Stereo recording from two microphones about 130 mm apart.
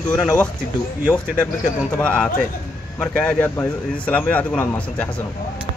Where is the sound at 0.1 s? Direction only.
10° left (ahead or behind).